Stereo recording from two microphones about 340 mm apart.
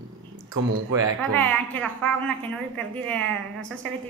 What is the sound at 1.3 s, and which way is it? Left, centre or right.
A woman's voice, centre.